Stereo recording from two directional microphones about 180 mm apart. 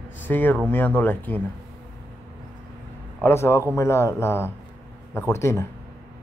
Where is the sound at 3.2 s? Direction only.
15° left (ahead or behind).